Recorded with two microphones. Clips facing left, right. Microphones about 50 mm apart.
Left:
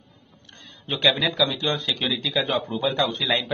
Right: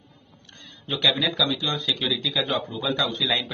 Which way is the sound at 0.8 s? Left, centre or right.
Left.